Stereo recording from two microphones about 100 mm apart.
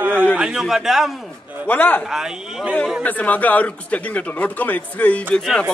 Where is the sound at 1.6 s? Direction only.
15° left (ahead or behind).